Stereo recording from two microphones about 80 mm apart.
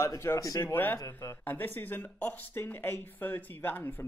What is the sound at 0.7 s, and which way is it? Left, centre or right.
Speech, left.